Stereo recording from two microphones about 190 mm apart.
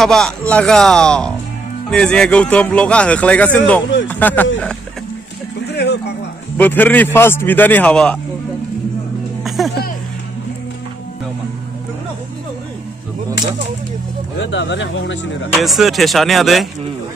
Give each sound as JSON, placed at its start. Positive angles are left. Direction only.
{"t": 0.0, "sound": "speech", "side_deg": 5}
{"t": 5.7, "sound": "a sound", "side_deg": 60}
{"t": 6.6, "sound": "speech", "side_deg": 10}
{"t": 9.6, "sound": "speech", "side_deg": 0}
{"t": 14.4, "sound": "speech", "side_deg": 70}
{"t": 15.5, "sound": "speech", "side_deg": 0}